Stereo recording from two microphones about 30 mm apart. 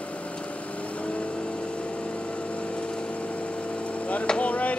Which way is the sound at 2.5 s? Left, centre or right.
Left.